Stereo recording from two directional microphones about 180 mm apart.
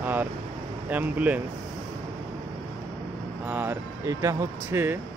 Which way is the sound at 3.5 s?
10° right (ahead or behind).